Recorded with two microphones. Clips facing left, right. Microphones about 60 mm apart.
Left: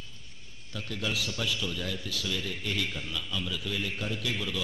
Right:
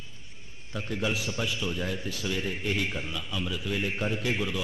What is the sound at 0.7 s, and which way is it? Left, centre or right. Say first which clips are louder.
A man's voice: right 3 dB; right.